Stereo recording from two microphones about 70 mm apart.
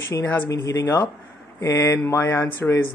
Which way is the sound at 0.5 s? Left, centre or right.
Left.